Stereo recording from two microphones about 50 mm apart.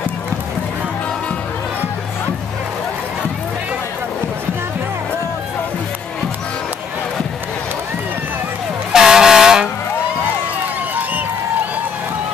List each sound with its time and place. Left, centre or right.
8.9 s air horn: centre